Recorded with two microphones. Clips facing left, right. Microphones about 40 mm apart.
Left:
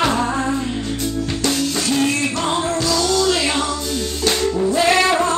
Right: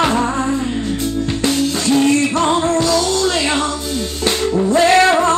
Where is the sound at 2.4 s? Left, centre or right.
Right.